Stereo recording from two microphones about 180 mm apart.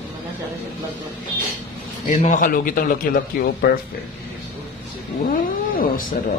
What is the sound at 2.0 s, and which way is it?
A man's voice, 40° left (ahead or behind).